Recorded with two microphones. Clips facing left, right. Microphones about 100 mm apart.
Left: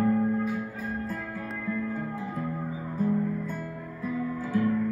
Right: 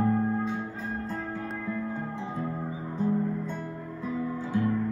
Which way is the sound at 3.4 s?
25° right (ahead or behind).